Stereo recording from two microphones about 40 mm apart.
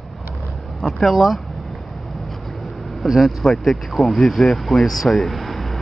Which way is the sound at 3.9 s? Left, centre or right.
Centre.